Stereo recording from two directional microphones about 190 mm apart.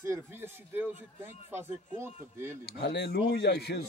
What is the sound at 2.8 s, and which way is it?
Speech, 60° left (ahead or behind).